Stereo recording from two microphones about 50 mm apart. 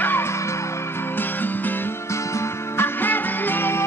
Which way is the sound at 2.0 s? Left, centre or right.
Left.